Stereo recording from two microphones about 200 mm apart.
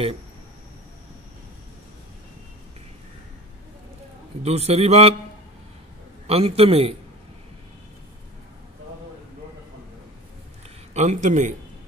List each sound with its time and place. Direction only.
4.4 s a man's voice: 30° right (ahead or behind)
6.2 s a man's voice: 30° right (ahead or behind)
10.9 s a man's voice: 35° right (ahead or behind)